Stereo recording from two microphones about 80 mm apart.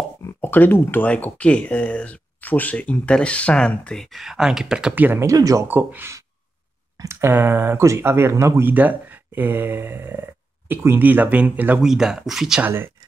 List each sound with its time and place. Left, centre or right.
0.4 s speech: left; by 4.9 s centre
4.9 s speech: right
5.2 s speech: right
5.7 s speech: right
7.0 s speech: right
8.7 s speech: right
11.8 s speech: centre
12.6 s speech: right